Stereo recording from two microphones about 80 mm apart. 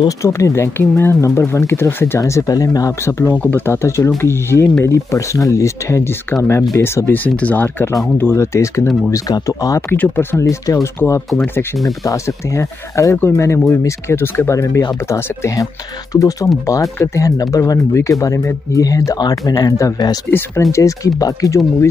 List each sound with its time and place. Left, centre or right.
0.2 s speech: left
2.1 s speech: left
3.3 s speech: left
7.2 s speech: centre
8.2 s speech: left
9.8 s speech: left
10.4 s speech: left
12.0 s speech: left
20.2 s speech: left
20.7 s speech: left